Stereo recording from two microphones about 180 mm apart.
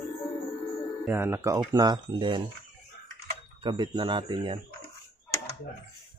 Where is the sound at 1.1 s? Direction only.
15° right (ahead or behind).